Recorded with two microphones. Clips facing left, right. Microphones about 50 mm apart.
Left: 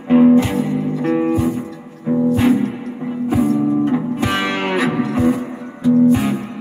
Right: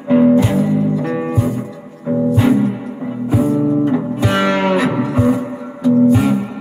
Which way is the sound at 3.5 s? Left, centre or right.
Centre.